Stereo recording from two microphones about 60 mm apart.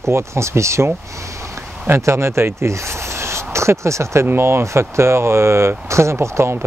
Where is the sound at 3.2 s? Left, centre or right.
Right.